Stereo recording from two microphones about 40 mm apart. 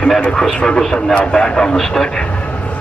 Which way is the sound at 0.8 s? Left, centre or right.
Centre.